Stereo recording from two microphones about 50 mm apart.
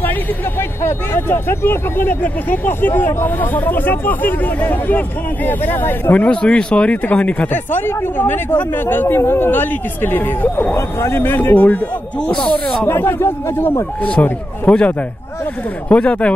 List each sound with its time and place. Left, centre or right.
0.6 s speech: left
2.2 s speech: left
6.1 s speech: left
7.5 s speech: left
10.7 s speech: left
11.5 s speech: left
12.2 s speech: centre
12.8 s speech: left
14.7 s speech: left
15.9 s speech: left